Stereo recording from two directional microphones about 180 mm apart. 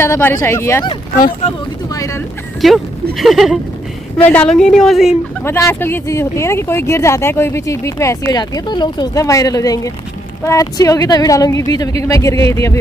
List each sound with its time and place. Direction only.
0.0 s speech: 15° left (ahead or behind)
1.4 s speech: 40° left (ahead or behind)
2.6 s speech: centre (ahead or behind)
5.4 s speech: 15° left (ahead or behind)